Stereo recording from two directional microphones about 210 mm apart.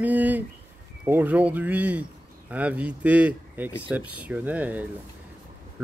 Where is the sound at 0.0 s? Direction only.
5° right (ahead or behind).